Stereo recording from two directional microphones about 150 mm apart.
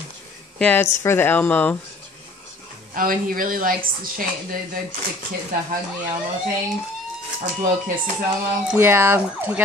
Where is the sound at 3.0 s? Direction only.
65° right (ahead or behind).